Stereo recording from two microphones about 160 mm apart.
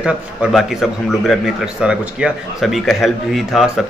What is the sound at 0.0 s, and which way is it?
A man's voice, 5° right (ahead or behind).